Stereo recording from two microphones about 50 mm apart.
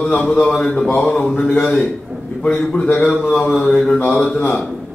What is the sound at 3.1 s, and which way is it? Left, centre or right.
Speech, centre.